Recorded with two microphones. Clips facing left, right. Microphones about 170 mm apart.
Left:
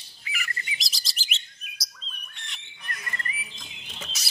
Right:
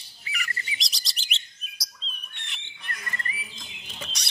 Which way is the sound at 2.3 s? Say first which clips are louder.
Even; centre (ahead or behind).